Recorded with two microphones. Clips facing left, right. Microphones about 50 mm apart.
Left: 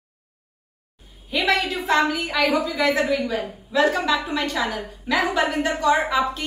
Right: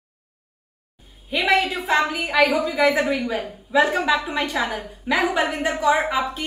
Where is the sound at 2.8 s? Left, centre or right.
Centre.